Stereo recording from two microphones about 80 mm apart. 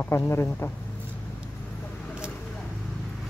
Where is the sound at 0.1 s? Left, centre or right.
Left.